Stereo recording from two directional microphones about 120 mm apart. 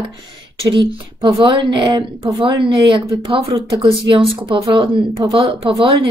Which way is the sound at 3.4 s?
25° right (ahead or behind).